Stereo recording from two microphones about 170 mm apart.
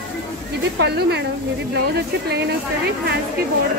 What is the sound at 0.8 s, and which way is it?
Speech, 75° right (ahead or behind).